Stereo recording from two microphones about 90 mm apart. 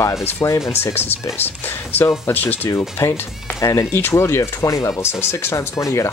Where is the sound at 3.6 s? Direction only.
40° left (ahead or behind).